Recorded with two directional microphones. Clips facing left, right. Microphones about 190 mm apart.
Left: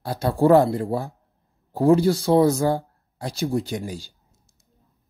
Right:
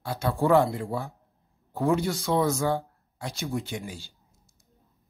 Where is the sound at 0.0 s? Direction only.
35° left (ahead or behind).